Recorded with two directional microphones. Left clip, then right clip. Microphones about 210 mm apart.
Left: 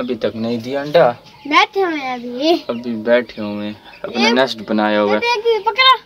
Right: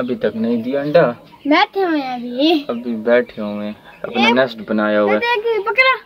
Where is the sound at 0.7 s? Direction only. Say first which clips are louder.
Left 1 dB; 15° left (ahead or behind).